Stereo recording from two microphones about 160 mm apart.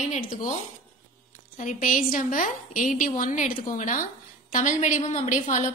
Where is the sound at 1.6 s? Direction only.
55° left (ahead or behind).